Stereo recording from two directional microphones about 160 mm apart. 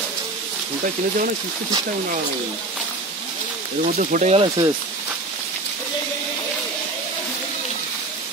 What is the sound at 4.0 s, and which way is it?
Speech, 55° right (ahead or behind).